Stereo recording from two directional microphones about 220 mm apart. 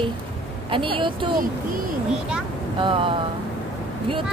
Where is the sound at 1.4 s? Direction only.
40° right (ahead or behind).